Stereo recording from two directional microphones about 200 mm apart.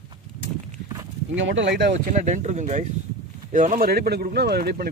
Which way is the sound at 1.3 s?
65° right (ahead or behind).